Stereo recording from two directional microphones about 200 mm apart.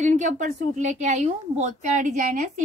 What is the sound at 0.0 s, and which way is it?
A woman's voice, 35° right (ahead or behind).